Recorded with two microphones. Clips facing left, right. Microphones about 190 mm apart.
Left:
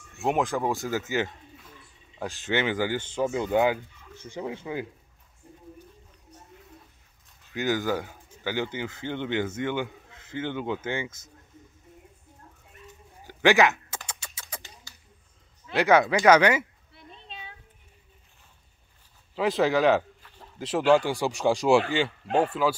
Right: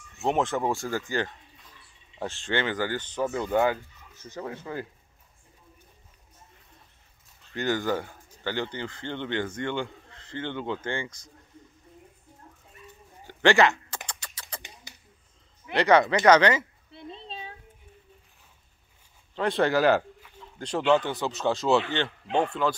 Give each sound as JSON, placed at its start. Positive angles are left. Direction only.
{"t": 0.2, "sound": "speech", "side_deg": 0}
{"t": 0.7, "sound": "a man's voice", "side_deg": 15}
{"t": 7.5, "sound": "a man's voice", "side_deg": 5}
{"t": 13.3, "sound": "typing", "side_deg": 5}
{"t": 14.9, "sound": "a sound", "side_deg": -20}
{"t": 15.7, "sound": "a man's voice", "side_deg": 5}
{"t": 16.9, "sound": "a sound", "side_deg": -30}
{"t": 19.3, "sound": "a man's voice", "side_deg": 0}